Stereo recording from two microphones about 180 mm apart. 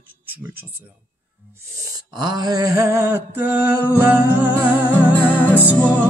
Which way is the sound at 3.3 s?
10° right (ahead or behind).